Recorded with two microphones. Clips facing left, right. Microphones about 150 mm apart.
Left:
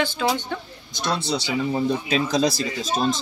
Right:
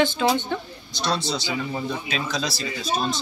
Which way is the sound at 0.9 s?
50° left (ahead or behind).